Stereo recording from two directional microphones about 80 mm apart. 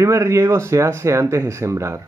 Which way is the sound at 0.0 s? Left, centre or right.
Right.